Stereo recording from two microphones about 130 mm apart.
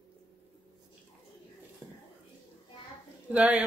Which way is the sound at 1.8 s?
15° right (ahead or behind).